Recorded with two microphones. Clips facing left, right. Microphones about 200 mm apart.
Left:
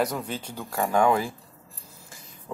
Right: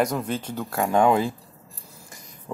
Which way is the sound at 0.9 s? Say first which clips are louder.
Right 3 dB; 20° right (ahead or behind).